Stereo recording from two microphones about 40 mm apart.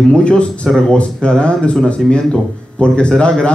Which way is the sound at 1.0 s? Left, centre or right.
Left.